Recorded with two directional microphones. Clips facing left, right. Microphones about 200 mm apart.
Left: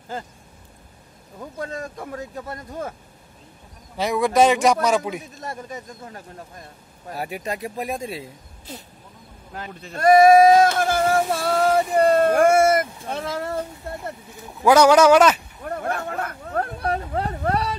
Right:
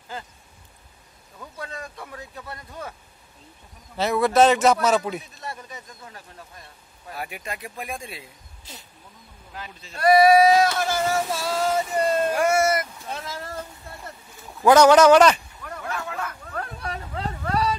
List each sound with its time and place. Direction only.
1.6 s speech: 45° left (ahead or behind)
3.9 s speech: 15° left (ahead or behind)
5.3 s speech: 45° left (ahead or behind)
9.5 s speech: 50° left (ahead or behind)
14.6 s speech: 10° left (ahead or behind)
15.6 s a sound: 50° left (ahead or behind)